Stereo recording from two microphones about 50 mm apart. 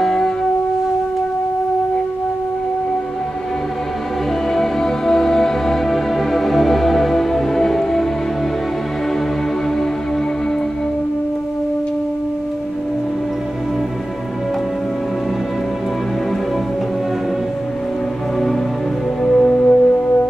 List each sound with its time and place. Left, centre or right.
0.0 s music: centre
4.5 s music: centre
19.2 s music: centre
19.5 s music: left